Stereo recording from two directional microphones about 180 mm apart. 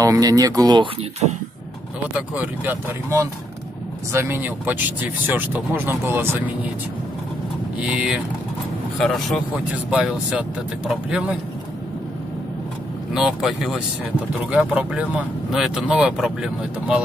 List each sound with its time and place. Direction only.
0.0 s speech: 20° right (ahead or behind)
2.1 s speech: 10° right (ahead or behind)
7.8 s speech: 5° right (ahead or behind)
13.1 s speech: centre (ahead or behind)